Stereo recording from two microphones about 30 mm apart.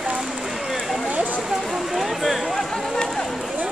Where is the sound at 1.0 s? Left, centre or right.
Right.